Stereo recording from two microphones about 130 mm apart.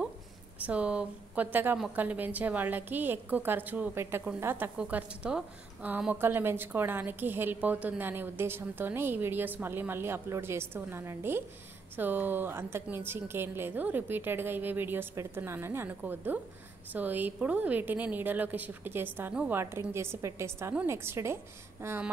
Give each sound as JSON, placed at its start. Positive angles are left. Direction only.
{"t": 0.7, "sound": "a woman's voice", "side_deg": -10}